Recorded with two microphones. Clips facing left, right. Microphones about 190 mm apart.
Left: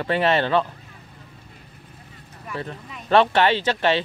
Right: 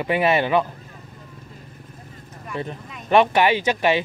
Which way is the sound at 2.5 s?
20° right (ahead or behind).